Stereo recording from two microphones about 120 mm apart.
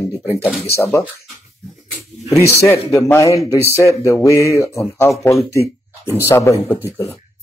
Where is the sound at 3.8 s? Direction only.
25° left (ahead or behind).